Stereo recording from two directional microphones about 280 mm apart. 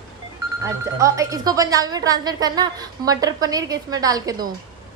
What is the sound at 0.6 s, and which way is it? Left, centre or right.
A woman's voice, centre.